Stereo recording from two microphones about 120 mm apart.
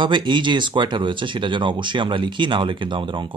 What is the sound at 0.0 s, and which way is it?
Speech, 40° right (ahead or behind).